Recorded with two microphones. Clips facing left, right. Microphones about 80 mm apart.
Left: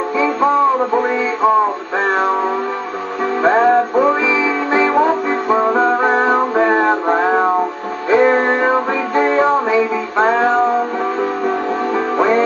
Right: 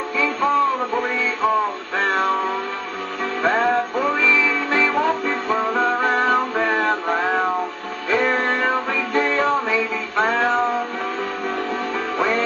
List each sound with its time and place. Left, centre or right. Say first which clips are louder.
0.7 s music: left 7 dB; centre
3.4 s music: left 7 dB; centre
8.1 s music: left 8 dB; centre
9.7 s music: left 7 dB; centre